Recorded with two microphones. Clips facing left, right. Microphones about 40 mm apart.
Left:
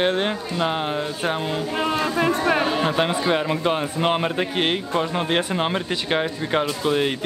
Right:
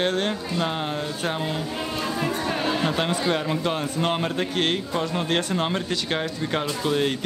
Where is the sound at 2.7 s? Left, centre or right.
Centre.